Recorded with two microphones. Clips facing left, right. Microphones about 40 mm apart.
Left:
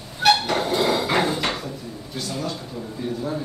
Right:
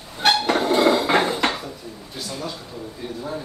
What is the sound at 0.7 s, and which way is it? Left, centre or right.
Hammer, right.